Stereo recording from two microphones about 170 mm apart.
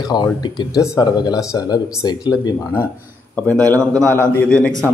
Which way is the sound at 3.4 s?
10° left (ahead or behind).